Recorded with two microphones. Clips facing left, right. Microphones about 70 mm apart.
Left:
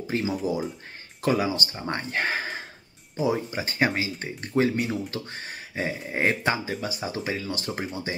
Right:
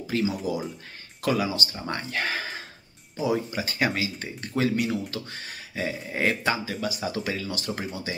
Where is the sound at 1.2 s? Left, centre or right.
Left.